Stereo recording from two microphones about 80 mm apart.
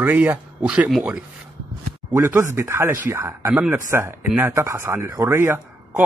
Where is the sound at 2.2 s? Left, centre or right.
Right.